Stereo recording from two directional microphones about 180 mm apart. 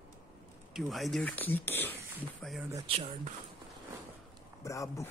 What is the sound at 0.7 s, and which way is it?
Speech, centre (ahead or behind).